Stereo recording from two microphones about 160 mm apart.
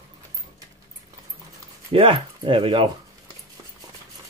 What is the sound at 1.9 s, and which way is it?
Speech, 35° right (ahead or behind).